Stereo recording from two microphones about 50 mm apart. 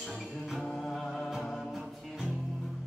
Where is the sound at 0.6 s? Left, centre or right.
Centre.